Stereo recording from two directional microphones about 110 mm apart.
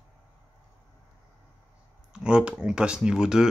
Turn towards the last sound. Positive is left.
turn(degrees=-5)  # may be behind; listen again after turning